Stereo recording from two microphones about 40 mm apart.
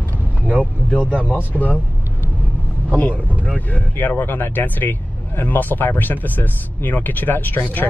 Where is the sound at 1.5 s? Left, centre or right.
Left.